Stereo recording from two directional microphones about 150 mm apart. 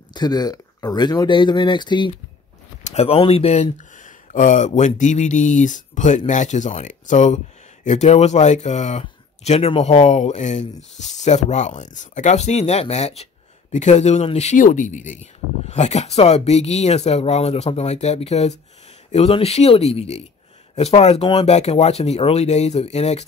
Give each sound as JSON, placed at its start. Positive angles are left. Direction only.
{"t": 0.1, "sound": "speech", "side_deg": 25}
{"t": 2.8, "sound": "speech", "side_deg": 45}